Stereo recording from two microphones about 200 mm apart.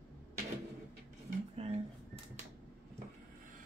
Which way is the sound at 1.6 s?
30° right (ahead or behind).